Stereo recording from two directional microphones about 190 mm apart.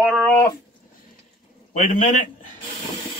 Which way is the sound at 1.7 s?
45° left (ahead or behind).